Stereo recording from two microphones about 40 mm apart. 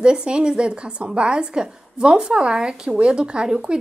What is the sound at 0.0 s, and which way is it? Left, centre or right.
A woman's voice, right.